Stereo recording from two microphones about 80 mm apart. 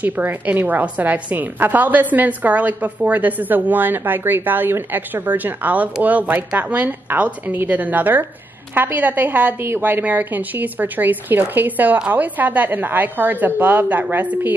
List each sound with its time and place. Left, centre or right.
0.0 s a woman's voice: right